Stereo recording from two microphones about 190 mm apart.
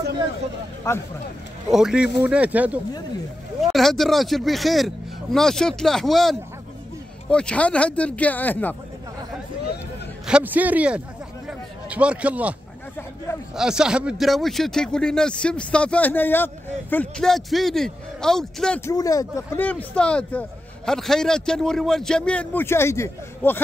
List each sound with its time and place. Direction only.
0.8 s speech: 15° left (ahead or behind)
1.7 s a man's voice: 5° right (ahead or behind)
10.2 s a man's voice: 5° right (ahead or behind)
11.4 s a sound: 5° right (ahead or behind)
13.6 s speech: 5° right (ahead or behind)
18.9 s speech: 15° left (ahead or behind)